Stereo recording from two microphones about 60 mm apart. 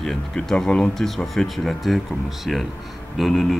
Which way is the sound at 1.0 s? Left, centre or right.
Centre.